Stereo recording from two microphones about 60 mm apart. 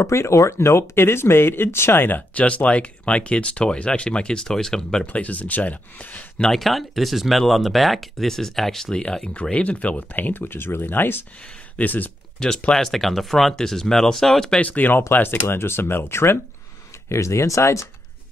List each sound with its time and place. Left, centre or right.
0.0 s speech: left
2.4 s speech: centre
5.0 s speech: left
6.4 s speech: centre
9.0 s speech: centre
12.4 s speech: centre
14.6 s speech: left
17.1 s speech: left